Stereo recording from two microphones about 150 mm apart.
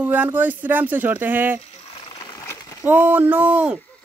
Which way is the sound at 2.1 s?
25° left (ahead or behind).